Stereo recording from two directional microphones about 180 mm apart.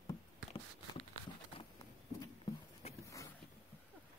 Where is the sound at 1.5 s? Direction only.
30° left (ahead or behind).